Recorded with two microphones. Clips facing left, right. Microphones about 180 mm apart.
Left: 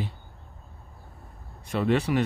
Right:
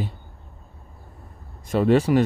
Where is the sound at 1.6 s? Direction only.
40° right (ahead or behind).